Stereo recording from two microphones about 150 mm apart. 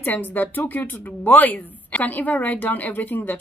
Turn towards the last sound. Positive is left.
turn(degrees=10)  # may be behind; listen again after turning